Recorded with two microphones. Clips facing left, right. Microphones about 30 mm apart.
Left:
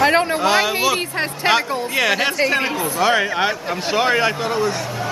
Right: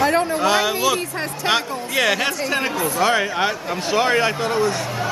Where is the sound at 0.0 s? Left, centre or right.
Left.